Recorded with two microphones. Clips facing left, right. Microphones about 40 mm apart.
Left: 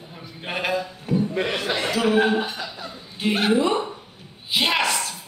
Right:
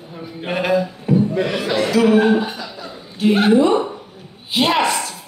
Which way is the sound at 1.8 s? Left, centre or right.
Centre.